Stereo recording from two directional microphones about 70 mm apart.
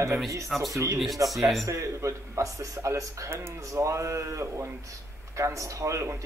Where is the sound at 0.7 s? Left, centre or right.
Right.